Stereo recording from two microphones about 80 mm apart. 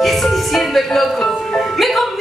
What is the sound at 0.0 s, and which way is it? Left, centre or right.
Music, centre.